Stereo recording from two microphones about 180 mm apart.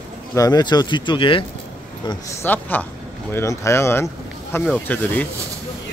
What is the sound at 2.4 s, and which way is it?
Speech, 10° left (ahead or behind).